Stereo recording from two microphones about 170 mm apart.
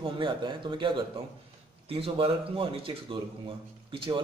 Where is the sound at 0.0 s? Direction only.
30° right (ahead or behind).